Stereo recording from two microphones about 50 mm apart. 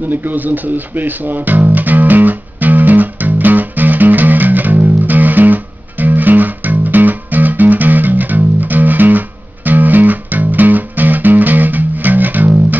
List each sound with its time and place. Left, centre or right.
0.0 s music: right